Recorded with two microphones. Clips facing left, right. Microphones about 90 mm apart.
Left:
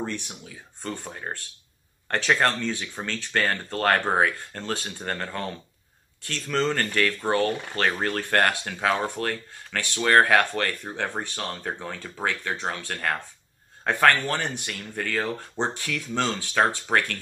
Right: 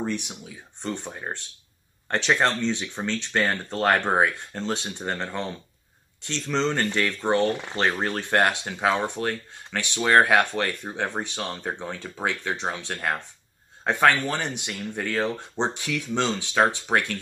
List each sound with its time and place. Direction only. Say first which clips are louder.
0.0 s speech: right 3 dB; 15° right (ahead or behind)